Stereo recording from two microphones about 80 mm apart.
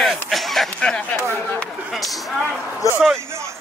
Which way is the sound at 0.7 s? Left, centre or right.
Centre.